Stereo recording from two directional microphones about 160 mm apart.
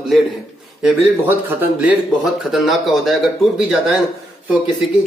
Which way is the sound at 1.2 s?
10° right (ahead or behind).